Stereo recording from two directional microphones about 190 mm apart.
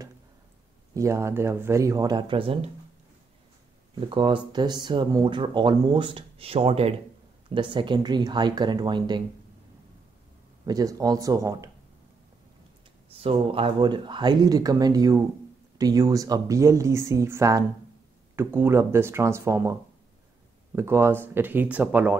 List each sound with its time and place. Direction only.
0.9 s speech: 15° right (ahead or behind)
3.9 s speech: 25° right (ahead or behind)
10.6 s speech: 20° right (ahead or behind)
13.2 s speech: 30° right (ahead or behind); by 22.2 s 10° right (ahead or behind)